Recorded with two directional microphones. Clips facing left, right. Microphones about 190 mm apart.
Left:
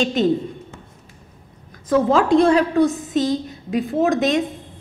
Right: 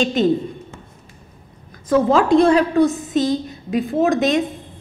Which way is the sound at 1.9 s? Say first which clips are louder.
Right 1 dB; 15° right (ahead or behind).